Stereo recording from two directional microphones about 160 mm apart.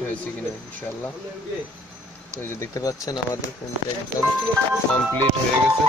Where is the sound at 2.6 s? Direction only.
20° left (ahead or behind).